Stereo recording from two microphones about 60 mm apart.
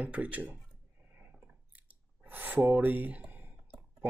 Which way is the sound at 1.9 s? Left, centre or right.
Right.